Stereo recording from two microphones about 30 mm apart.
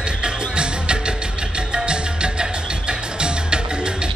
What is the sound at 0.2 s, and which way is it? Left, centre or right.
Music, right.